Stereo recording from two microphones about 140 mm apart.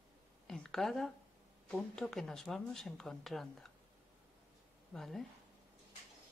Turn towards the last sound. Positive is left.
turn(degrees=0)  # may be behind; listen again after turning